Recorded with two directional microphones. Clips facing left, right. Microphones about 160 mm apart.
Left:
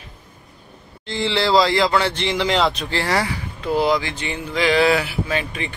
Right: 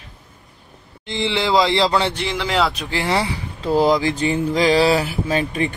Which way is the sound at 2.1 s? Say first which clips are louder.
Left 1 dB; centre (ahead or behind).